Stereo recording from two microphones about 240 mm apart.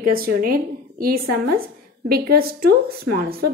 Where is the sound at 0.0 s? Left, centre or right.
Right.